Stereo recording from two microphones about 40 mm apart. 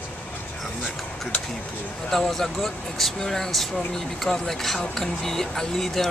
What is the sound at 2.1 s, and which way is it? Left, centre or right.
Speech, centre.